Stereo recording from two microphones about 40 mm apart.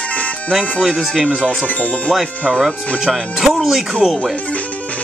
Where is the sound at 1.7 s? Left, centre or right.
Left.